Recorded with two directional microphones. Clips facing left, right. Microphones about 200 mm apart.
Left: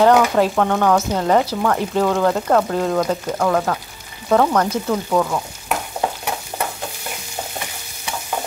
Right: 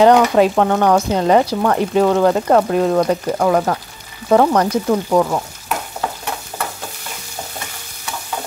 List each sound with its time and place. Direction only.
0.0 s speech: 15° right (ahead or behind)